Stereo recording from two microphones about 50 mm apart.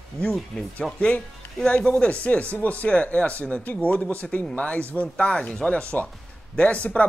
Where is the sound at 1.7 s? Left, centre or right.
Left.